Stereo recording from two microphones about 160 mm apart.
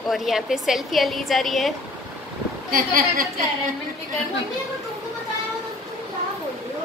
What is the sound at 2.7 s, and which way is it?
Speech, 65° right (ahead or behind).